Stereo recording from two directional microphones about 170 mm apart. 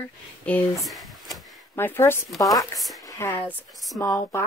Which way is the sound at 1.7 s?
15° left (ahead or behind).